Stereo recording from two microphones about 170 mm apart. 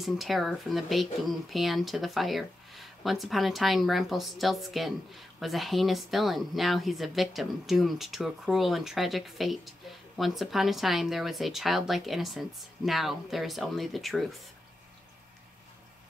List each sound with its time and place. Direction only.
0.0 s speech: centre (ahead or behind)